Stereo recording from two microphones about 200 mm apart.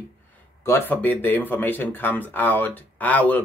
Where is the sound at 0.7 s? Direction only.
10° left (ahead or behind).